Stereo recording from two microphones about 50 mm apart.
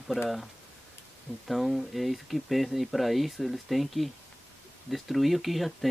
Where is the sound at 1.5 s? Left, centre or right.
Centre.